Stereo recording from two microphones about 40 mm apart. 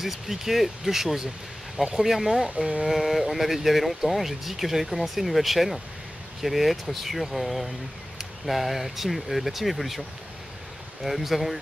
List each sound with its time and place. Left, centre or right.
0.0 s speech: centre